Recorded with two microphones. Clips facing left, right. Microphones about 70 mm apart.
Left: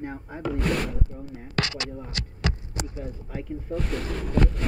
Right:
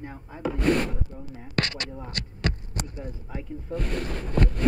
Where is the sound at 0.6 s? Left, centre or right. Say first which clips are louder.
Right 4 dB; right.